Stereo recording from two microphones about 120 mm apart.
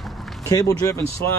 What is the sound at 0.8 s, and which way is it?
Speech, 25° left (ahead or behind).